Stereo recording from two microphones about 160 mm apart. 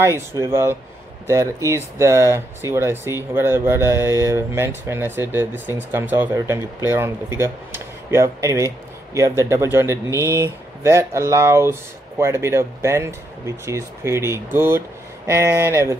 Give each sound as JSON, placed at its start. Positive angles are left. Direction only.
{"t": 0.0, "sound": "speech", "side_deg": -15}